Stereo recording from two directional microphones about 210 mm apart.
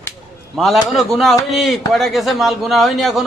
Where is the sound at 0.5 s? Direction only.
Centre (ahead or behind).